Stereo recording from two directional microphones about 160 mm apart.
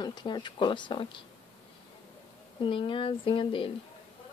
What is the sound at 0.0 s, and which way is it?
Speech, 30° left (ahead or behind).